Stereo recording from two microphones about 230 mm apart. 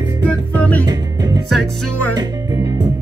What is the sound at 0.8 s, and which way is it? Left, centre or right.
Music, centre.